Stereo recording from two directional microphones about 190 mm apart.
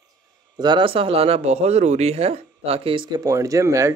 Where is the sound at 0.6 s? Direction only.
25° right (ahead or behind).